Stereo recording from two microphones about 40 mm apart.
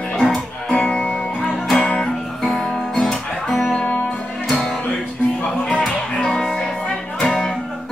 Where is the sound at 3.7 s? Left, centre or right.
Left.